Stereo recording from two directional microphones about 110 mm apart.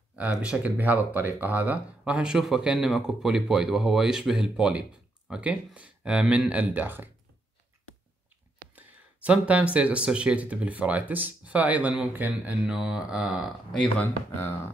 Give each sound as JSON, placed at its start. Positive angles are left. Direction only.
{"t": 0.1, "sound": "speech", "side_deg": -10}
{"t": 8.7, "sound": "speech", "side_deg": -15}
{"t": 14.0, "sound": "speech", "side_deg": 20}